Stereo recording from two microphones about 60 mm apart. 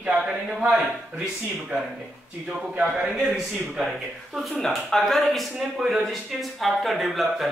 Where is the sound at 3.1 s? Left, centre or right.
Centre.